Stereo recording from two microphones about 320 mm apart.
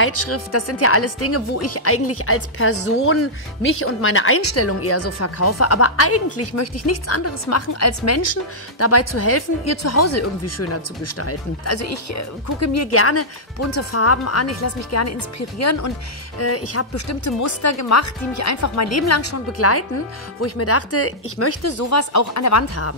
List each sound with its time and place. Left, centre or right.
0.0 s speech: left